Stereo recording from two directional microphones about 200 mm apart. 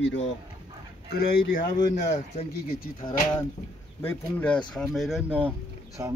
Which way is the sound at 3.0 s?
25° left (ahead or behind).